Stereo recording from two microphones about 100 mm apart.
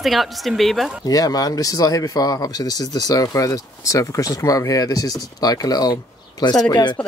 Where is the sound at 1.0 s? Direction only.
40° left (ahead or behind).